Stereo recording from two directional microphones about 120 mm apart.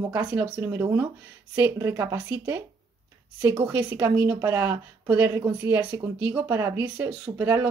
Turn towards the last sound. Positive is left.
turn(degrees=-15)  # may be behind; listen again after turning